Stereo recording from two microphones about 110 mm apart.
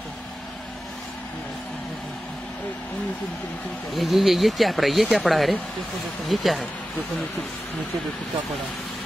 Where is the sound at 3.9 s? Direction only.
Centre (ahead or behind).